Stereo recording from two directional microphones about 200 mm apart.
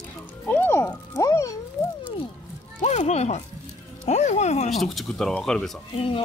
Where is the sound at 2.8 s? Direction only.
35° left (ahead or behind).